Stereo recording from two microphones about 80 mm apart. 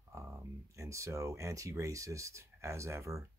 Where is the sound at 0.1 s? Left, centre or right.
Right.